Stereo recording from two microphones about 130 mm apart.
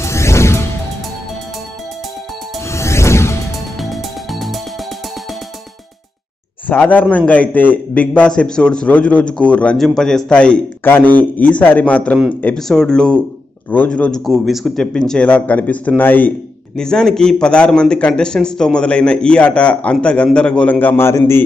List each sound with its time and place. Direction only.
0.0 s music: 20° left (ahead or behind)
2.7 s music: 20° left (ahead or behind)
3.9 s music: centre (ahead or behind)
6.7 s a man's voice: 10° left (ahead or behind)